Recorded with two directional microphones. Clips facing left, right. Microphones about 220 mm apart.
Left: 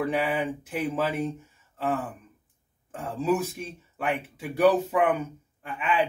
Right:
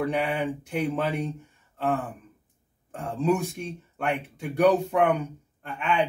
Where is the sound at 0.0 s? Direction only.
Centre (ahead or behind).